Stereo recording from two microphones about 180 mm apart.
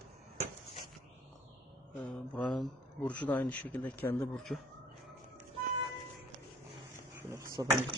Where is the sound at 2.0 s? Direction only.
5° left (ahead or behind).